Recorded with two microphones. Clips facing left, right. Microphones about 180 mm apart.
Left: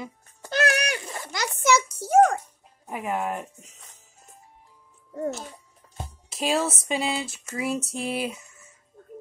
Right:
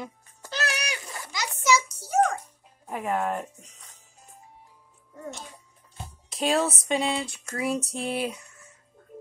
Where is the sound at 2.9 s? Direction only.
5° left (ahead or behind).